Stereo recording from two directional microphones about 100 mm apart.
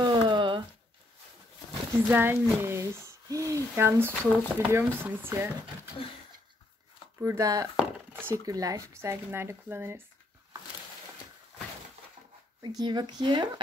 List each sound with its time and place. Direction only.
0.0 s a sound: 50° right (ahead or behind)
2.0 s speech: 20° right (ahead or behind)
7.2 s speech: 35° right (ahead or behind)
8.1 s a sound: 20° right (ahead or behind)
8.5 s speech: 35° right (ahead or behind)
12.6 s speech: 45° right (ahead or behind)